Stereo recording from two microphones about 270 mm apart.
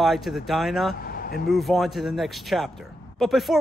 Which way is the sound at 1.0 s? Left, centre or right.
Left.